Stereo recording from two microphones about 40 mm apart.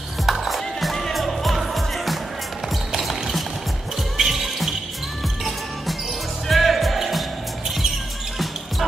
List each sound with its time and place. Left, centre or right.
0.3 s music: centre
6.4 s music: centre